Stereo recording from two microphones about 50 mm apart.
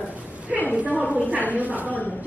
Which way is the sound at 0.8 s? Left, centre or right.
Right.